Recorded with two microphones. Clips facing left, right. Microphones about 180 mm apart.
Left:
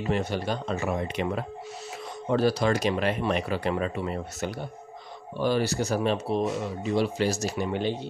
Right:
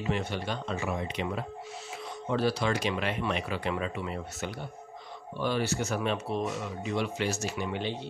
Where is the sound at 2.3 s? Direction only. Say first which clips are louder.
Left 5 dB; 40° left (ahead or behind).